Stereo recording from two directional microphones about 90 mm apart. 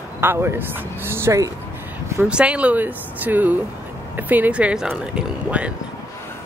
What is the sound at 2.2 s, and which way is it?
Speech, 10° right (ahead or behind).